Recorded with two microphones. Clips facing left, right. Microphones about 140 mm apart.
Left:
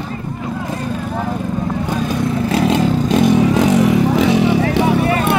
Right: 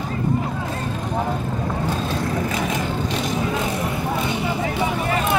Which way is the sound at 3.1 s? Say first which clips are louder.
Left 11 dB; 55° left (ahead or behind).